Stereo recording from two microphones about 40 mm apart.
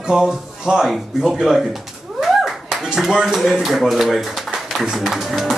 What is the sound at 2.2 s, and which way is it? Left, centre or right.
Clapping, centre.